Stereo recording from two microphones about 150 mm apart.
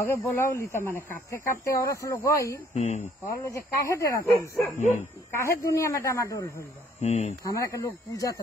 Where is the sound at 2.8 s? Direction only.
50° left (ahead or behind).